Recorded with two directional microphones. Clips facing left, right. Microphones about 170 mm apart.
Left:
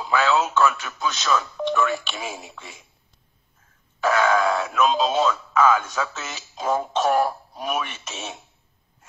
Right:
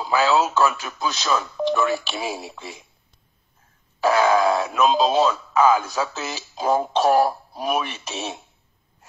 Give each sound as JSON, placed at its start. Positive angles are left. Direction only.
{"t": 0.0, "sound": "speech", "side_deg": -35}
{"t": 4.0, "sound": "speech", "side_deg": -35}